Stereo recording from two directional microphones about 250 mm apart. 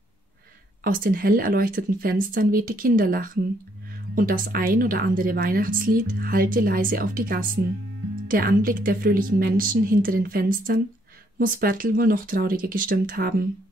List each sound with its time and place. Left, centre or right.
0.8 s speech: right